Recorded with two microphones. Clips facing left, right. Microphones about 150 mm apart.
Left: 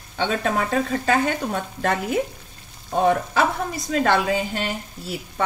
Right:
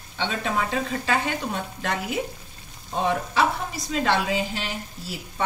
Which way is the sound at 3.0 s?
50° left (ahead or behind).